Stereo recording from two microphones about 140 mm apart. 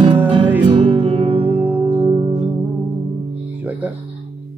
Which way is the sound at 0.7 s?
40° right (ahead or behind).